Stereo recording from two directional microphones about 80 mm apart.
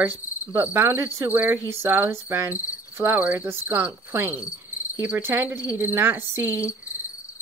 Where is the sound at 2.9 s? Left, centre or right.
Right.